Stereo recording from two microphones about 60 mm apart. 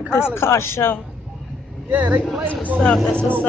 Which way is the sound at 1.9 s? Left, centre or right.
Right.